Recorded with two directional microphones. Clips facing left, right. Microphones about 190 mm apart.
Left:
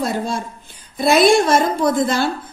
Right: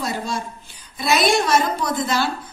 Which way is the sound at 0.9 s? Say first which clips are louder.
Left 6 dB; 50° left (ahead or behind).